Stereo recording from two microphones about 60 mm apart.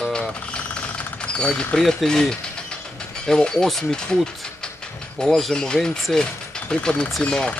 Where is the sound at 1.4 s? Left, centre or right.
Centre.